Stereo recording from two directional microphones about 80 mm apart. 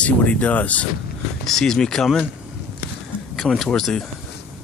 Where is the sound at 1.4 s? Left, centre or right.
Centre.